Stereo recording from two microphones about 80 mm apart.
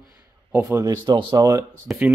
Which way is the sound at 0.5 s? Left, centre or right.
Right.